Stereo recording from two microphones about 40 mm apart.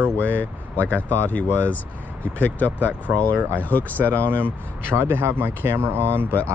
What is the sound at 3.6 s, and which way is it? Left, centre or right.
Speech, left.